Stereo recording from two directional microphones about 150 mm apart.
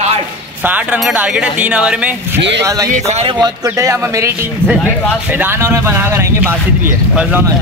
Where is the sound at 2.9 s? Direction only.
45° right (ahead or behind).